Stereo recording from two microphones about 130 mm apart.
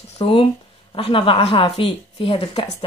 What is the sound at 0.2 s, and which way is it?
A woman's voice, 45° left (ahead or behind).